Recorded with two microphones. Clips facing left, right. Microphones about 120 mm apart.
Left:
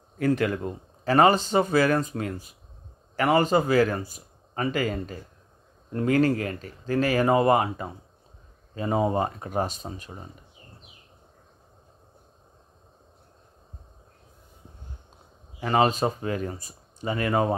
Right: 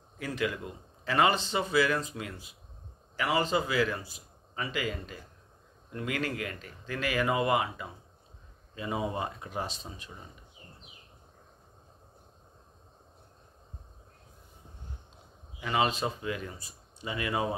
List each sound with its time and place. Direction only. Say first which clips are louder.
0.2 s speech: left 9 dB; 50° left (ahead or behind)
15.6 s speech: left 7 dB; 45° left (ahead or behind)